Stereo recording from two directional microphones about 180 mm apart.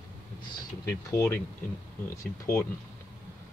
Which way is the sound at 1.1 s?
15° left (ahead or behind).